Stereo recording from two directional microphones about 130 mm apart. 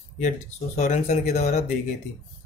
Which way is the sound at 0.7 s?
65° left (ahead or behind).